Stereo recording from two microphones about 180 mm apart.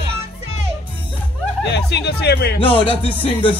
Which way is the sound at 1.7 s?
70° left (ahead or behind).